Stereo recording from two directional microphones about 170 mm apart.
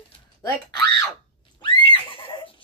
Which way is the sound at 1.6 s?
30° left (ahead or behind).